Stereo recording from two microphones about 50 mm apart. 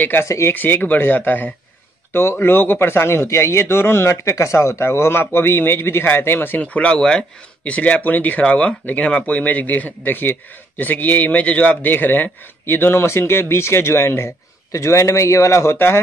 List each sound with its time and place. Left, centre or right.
0.2 s speech: left
0.6 s speech: left
2.1 s a man's voice: left
6.6 s speech: left
11.9 s speech: left
12.9 s speech: left
14.7 s a man's voice: left